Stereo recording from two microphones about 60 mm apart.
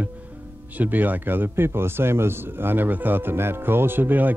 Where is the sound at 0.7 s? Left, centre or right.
Right.